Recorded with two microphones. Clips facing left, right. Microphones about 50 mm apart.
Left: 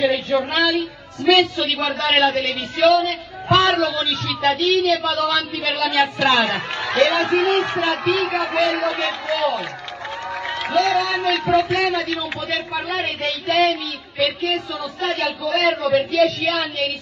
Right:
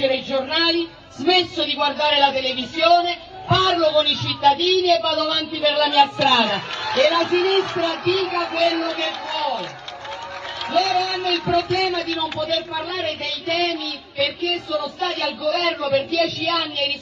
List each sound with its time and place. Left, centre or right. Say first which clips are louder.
0.0 s a man's voice: left 2 dB; left
5.9 s a man's voice: left 1 dB; left
10.7 s a man's voice: left 1 dB; left